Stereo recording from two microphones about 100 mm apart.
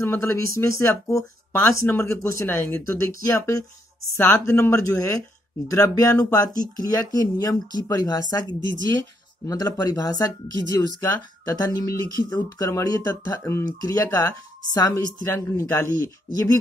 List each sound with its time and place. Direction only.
0.0 s speech: 25° left (ahead or behind)
9.5 s speech: 35° left (ahead or behind)